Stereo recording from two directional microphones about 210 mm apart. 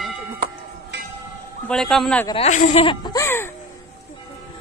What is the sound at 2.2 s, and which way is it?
Speech, 30° left (ahead or behind).